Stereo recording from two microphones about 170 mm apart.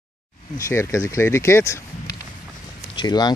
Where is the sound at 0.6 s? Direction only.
15° left (ahead or behind).